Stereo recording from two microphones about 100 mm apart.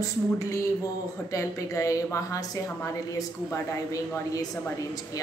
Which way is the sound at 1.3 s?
30° left (ahead or behind).